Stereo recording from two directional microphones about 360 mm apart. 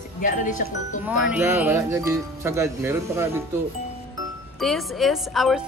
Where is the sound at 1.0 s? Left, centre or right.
Centre.